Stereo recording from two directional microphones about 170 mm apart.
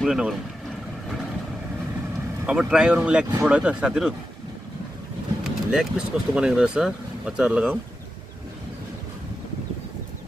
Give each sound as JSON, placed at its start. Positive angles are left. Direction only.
{"t": 0.0, "sound": "speech", "side_deg": 0}
{"t": 2.4, "sound": "speech", "side_deg": -5}
{"t": 5.4, "sound": "speech", "side_deg": -5}